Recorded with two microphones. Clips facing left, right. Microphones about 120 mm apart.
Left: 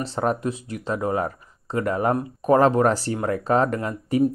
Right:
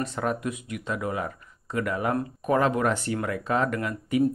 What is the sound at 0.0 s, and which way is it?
Speech, 30° left (ahead or behind).